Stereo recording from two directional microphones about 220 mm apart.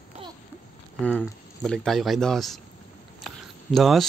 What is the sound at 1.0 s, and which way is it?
Speech, 5° left (ahead or behind).